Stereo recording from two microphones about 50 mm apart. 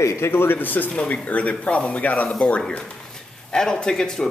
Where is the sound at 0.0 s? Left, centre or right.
Left.